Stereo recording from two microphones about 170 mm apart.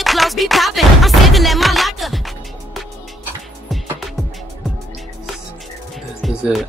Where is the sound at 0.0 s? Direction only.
Centre (ahead or behind).